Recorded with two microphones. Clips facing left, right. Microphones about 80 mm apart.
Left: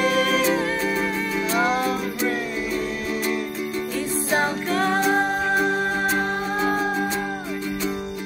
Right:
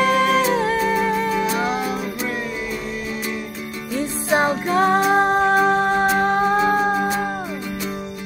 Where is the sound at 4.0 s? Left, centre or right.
Right.